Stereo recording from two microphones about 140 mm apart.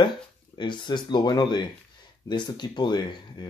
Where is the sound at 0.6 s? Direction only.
35° left (ahead or behind).